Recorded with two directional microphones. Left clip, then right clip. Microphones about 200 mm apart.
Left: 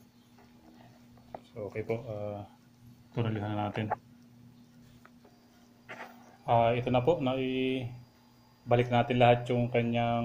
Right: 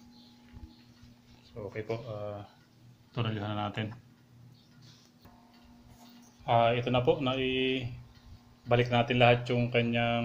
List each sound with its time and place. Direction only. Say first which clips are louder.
1.5 s speech: left 2 dB; 20° left (ahead or behind)
6.4 s speech: even; 10° left (ahead or behind)